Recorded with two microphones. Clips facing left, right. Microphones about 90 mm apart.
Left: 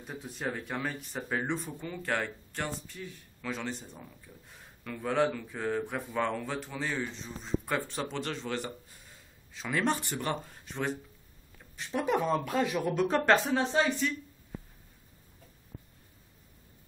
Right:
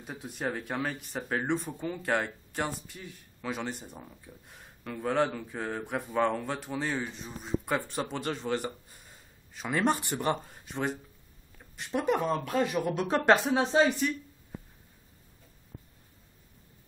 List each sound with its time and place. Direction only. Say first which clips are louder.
0.0 s speech: right 2 dB; 5° right (ahead or behind)
1.9 s speech: right 3 dB; 15° right (ahead or behind)
12.0 s speech: even; centre (ahead or behind)
13.7 s speech: right 6 dB; 20° right (ahead or behind)